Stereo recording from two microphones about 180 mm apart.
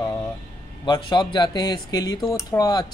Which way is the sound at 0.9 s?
25° left (ahead or behind).